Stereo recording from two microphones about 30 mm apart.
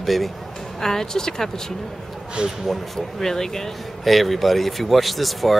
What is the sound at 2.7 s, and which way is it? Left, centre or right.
Speech, centre.